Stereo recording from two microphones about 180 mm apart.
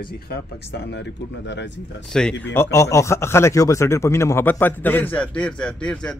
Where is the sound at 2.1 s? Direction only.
5° left (ahead or behind).